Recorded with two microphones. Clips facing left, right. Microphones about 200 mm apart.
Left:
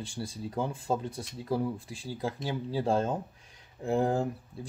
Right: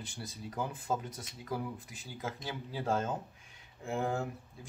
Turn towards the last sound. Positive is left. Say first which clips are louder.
# left 7 dB
turn(degrees=35)  # may be behind; listen again after turning